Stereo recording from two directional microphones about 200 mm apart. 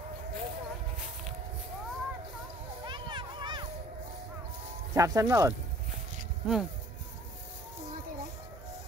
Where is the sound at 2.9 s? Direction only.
25° right (ahead or behind).